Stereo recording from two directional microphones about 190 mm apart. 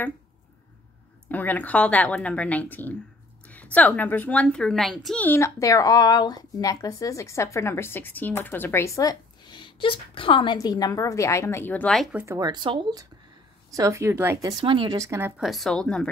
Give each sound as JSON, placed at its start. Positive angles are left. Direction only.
{"t": 1.3, "sound": "a woman's voice", "side_deg": 10}
{"t": 12.4, "sound": "speech", "side_deg": -20}
{"t": 14.6, "sound": "speech", "side_deg": -25}